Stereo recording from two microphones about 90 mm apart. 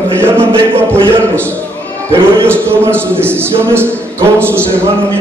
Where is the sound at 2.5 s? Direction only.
25° right (ahead or behind).